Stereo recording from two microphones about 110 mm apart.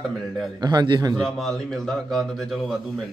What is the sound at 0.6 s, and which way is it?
Speech, 40° right (ahead or behind).